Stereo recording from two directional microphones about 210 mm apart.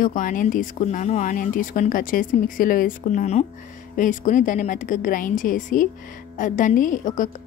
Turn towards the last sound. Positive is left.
turn(degrees=40)  # may be behind; listen again after turning